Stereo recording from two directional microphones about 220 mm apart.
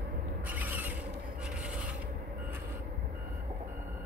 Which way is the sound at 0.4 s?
10° right (ahead or behind).